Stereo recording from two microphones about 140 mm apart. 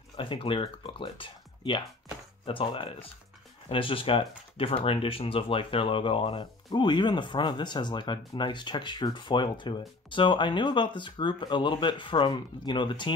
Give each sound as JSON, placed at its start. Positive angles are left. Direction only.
{"t": 0.1, "sound": "speech", "side_deg": 40}